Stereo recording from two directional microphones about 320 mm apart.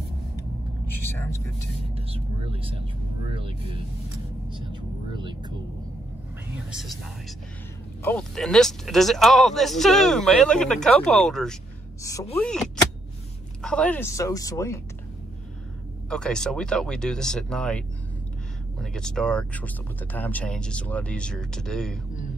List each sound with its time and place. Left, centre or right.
0.8 s vehicle: centre
2.0 s speech: centre
6.7 s speech: centre
8.0 s speech: centre
16.1 s speech: centre